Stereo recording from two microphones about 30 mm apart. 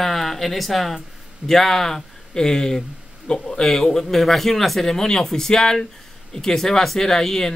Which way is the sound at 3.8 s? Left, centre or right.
Centre.